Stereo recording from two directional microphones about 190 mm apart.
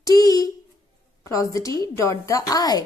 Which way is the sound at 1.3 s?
15° left (ahead or behind).